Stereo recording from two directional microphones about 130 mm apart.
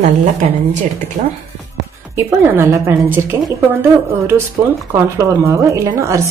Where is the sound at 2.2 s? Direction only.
15° right (ahead or behind).